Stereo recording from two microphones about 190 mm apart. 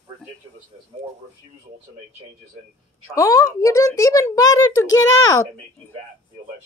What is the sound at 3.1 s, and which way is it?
A woman's voice, 20° left (ahead or behind).